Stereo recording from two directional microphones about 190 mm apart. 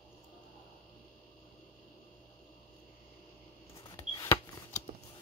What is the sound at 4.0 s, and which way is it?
Shuffling cards, 20° left (ahead or behind).